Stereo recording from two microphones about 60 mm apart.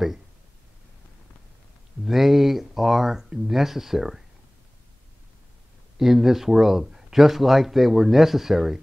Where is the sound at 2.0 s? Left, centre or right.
Centre.